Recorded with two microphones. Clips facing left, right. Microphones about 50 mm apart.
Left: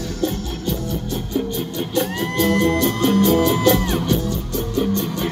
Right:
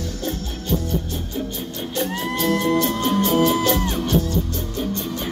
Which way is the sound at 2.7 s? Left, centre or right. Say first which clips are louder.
Left 2 dB; left.